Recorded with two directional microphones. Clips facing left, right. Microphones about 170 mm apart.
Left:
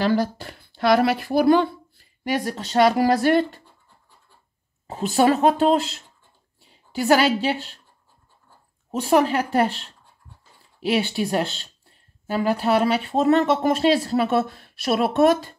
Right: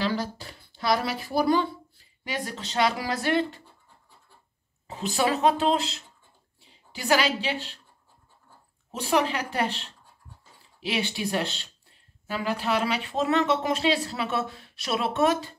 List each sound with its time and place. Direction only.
0.0 s speech: 55° left (ahead or behind)
4.8 s a woman's voice: 50° left (ahead or behind)
8.9 s speech: 45° left (ahead or behind)
10.9 s speech: 45° left (ahead or behind)